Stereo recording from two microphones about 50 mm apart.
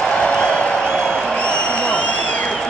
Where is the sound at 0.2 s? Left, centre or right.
Centre.